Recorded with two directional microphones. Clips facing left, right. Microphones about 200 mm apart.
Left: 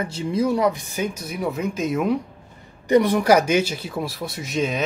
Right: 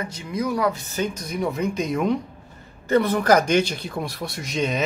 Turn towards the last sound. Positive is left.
turn(degrees=0)  # may be behind; listen again after turning